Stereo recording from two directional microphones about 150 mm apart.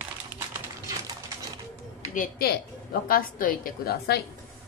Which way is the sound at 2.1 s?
90° left.